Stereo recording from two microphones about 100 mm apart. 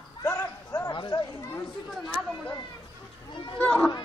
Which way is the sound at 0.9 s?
55° left (ahead or behind).